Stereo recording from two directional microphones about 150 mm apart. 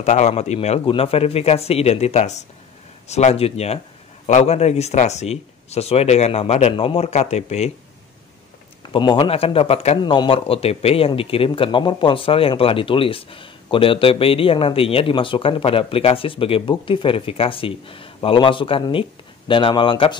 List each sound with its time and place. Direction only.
0.0 s speech: 50° left (ahead or behind)
8.9 s speech: 35° left (ahead or behind)